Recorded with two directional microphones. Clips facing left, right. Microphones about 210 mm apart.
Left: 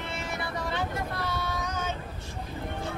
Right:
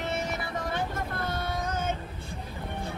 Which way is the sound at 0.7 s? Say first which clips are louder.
Even; 50° right (ahead or behind).